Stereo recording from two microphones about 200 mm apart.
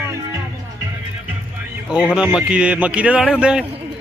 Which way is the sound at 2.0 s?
5° right (ahead or behind).